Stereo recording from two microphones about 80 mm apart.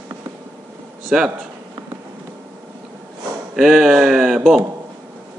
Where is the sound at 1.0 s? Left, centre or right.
Centre.